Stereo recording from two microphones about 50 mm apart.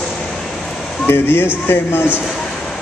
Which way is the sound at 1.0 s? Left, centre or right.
Left.